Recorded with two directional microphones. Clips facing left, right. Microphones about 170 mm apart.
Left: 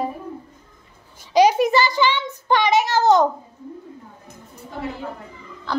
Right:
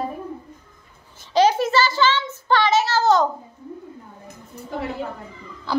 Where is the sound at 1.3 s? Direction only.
15° left (ahead or behind).